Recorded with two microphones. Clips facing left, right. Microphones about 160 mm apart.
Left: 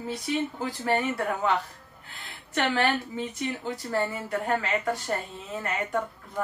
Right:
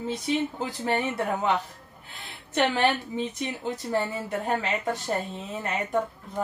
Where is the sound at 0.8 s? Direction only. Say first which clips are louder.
Even; 20° right (ahead or behind).